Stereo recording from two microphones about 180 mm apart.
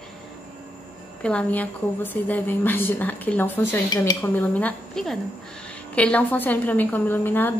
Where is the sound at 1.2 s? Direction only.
5° left (ahead or behind).